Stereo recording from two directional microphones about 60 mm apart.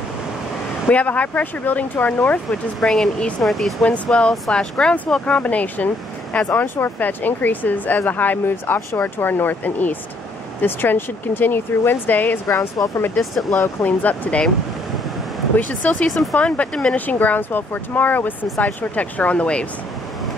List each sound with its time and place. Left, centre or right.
0.8 s speech: left
2.5 s speech: centre
3.8 s speech: centre
6.5 s speech: left
12.4 s speech: left
13.2 s speech: centre
13.8 s speech: left
16.1 s speech: centre
16.3 s speech: left